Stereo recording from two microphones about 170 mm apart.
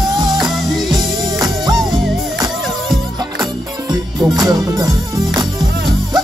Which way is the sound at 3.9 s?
25° right (ahead or behind).